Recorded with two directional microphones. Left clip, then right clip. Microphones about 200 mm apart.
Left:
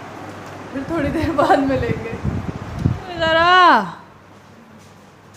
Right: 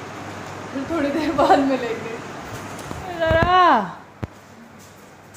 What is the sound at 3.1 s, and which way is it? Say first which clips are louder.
Speech: left 4 dB; 5° left (ahead or behind).